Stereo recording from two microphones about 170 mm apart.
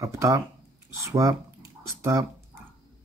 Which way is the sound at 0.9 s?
15° right (ahead or behind).